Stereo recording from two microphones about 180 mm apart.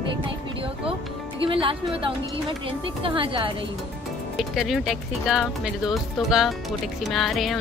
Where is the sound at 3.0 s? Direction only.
30° right (ahead or behind).